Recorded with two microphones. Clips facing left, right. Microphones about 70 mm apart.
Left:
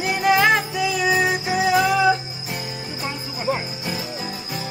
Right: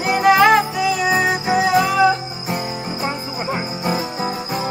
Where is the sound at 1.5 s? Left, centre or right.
Right.